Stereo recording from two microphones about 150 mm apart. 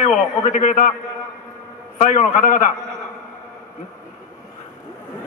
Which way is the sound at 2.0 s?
55° left (ahead or behind).